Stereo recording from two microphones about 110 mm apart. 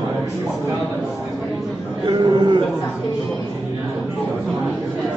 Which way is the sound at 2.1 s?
40° right (ahead or behind).